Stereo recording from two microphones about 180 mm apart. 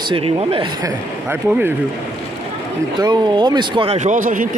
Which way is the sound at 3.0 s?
25° right (ahead or behind).